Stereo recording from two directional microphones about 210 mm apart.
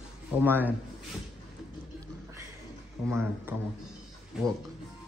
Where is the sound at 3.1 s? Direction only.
10° right (ahead or behind).